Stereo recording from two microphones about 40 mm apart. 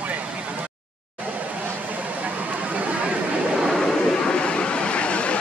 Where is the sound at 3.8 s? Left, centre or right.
Centre.